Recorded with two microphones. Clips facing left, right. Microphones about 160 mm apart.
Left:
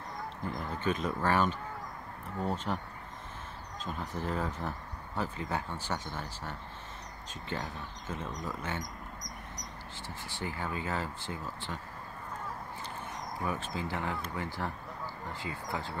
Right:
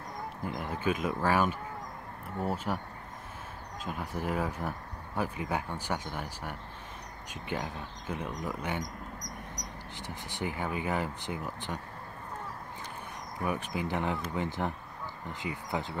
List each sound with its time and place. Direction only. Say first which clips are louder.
0.5 s speech: right 1 dB; 10° right (ahead or behind)
3.8 s speech: right 2 dB; 10° right (ahead or behind)
9.9 s speech: right 3 dB; 15° right (ahead or behind)
13.5 s speech: right 4 dB; 15° right (ahead or behind)